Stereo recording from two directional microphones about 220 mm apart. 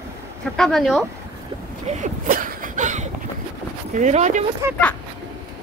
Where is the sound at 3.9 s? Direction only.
35° right (ahead or behind).